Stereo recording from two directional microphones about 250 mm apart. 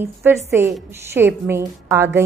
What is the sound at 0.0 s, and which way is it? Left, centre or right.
A woman's voice, centre.